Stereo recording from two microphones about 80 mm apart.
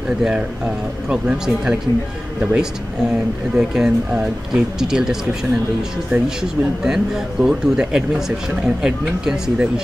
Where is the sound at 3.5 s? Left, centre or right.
Centre.